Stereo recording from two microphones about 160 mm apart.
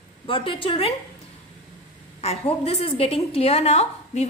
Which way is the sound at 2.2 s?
40° left (ahead or behind).